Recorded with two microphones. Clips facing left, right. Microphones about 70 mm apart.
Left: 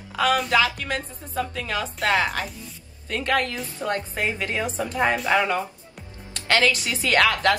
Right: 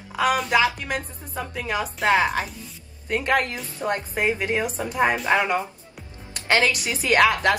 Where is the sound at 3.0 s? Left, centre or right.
Right.